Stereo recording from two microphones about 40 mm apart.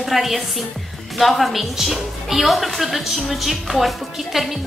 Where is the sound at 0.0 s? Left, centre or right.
Centre.